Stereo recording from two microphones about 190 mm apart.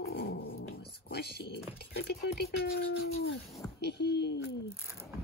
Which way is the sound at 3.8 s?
60° left (ahead or behind).